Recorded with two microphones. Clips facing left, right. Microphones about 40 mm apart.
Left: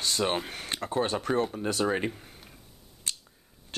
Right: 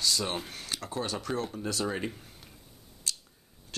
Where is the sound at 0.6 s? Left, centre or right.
Left.